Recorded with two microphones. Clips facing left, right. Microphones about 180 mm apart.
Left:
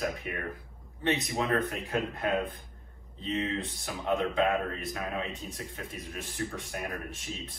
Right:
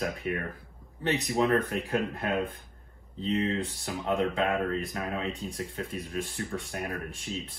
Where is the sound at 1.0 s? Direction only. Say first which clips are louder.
Right 3 dB; 35° right (ahead or behind).